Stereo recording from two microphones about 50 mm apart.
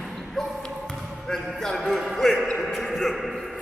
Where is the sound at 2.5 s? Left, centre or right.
Centre.